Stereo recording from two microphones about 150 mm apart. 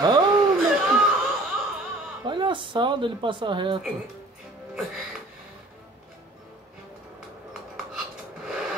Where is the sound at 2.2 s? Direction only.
30° right (ahead or behind).